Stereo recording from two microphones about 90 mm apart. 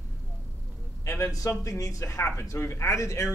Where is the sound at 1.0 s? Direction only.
35° left (ahead or behind).